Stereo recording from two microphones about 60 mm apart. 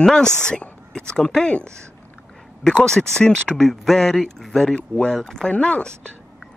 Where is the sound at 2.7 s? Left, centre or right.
Centre.